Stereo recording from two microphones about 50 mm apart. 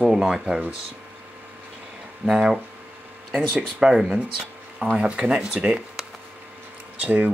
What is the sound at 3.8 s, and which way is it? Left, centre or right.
Speech, centre.